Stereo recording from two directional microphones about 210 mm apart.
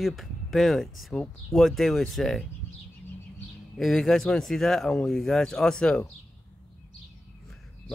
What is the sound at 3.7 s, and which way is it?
Speech, centre (ahead or behind).